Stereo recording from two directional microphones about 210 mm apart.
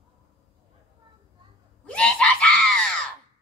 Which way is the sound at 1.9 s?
5° left (ahead or behind).